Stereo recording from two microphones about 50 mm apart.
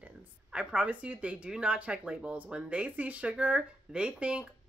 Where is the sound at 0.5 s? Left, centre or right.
Right.